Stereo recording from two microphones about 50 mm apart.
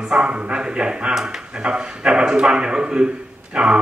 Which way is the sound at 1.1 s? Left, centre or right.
Centre.